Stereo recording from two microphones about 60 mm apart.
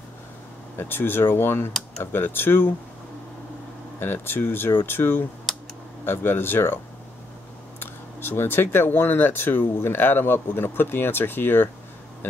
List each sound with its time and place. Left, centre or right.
0.7 s speech: left
1.7 s a sound: centre
2.1 s speech: left
4.0 s speech: left
7.8 s speech: left